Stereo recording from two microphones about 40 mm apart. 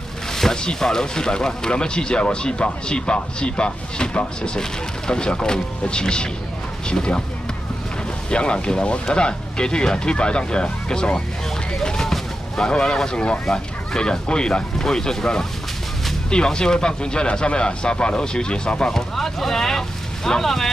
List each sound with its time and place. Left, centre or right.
0.3 s speech: centre
8.3 s speech: left
19.1 s speech: centre